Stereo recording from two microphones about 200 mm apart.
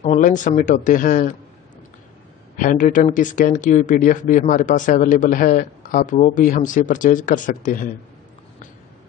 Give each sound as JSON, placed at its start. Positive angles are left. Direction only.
{"t": 0.0, "sound": "speech", "side_deg": 40}
{"t": 2.5, "sound": "speech", "side_deg": 40}